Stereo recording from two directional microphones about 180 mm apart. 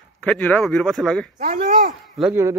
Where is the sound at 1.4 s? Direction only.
50° right (ahead or behind).